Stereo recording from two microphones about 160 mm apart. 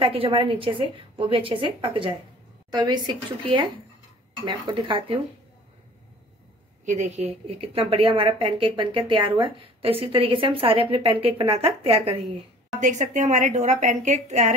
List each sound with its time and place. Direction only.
0.0 s a woman's voice: 35° right (ahead or behind)
6.9 s a woman's voice: 45° right (ahead or behind)
12.8 s a woman's voice: 50° right (ahead or behind)